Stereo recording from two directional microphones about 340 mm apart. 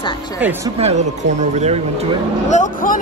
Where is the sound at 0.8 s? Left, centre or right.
Centre.